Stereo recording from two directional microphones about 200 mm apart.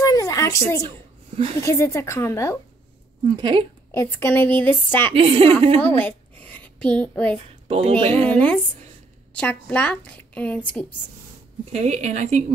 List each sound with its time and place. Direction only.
0.0 s a sound: 15° left (ahead or behind)
0.8 s a sound: 30° right (ahead or behind)
1.6 s a woman's voice: 15° left (ahead or behind)
3.3 s a woman's voice: 25° right (ahead or behind)
3.9 s a woman's voice: 10° left (ahead or behind)
5.1 s a woman's voice: 30° right (ahead or behind)
5.8 s a woman's voice: 10° left (ahead or behind)
7.6 s a woman's voice: 30° right (ahead or behind)
8.3 s a woman's voice: 5° left (ahead or behind)
11.7 s a woman's voice: 35° right (ahead or behind)